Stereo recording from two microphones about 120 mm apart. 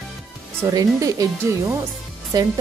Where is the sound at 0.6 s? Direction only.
30° right (ahead or behind).